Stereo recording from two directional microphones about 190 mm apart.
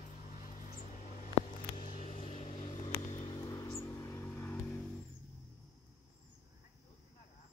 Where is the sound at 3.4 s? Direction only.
20° left (ahead or behind).